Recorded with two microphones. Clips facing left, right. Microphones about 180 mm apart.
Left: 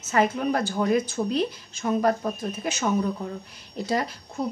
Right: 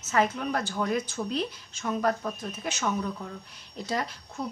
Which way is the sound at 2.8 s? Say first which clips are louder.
Left 5 dB; 20° left (ahead or behind).